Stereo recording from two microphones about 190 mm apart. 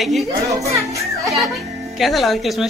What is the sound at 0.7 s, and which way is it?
Children playing, 15° right (ahead or behind).